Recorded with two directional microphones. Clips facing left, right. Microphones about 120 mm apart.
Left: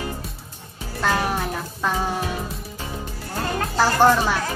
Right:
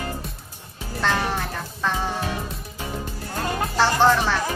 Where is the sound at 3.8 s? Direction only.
10° left (ahead or behind).